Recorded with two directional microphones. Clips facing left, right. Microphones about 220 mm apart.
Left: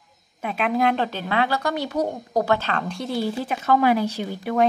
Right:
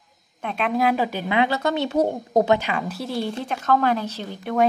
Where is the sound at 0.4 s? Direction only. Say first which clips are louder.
Even; 5° left (ahead or behind).